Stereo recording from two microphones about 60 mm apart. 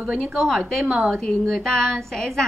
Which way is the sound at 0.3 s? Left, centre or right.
Centre.